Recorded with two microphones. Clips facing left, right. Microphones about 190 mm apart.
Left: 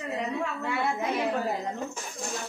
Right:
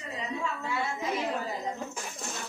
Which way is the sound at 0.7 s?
60° left (ahead or behind).